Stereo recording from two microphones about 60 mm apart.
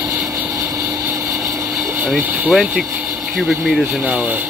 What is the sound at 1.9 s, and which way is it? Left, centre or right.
Speech, right.